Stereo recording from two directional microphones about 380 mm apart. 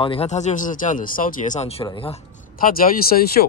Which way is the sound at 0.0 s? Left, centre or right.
Centre.